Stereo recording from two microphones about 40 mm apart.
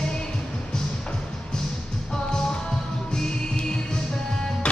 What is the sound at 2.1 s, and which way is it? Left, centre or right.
Music, centre.